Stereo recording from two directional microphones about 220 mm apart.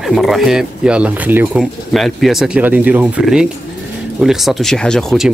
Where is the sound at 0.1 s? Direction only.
Centre (ahead or behind).